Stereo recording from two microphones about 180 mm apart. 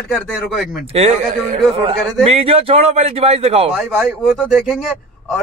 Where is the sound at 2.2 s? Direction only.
30° right (ahead or behind).